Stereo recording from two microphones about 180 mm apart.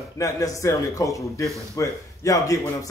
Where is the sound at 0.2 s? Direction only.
20° left (ahead or behind).